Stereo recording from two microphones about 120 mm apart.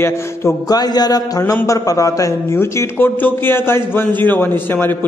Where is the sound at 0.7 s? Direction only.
35° left (ahead or behind).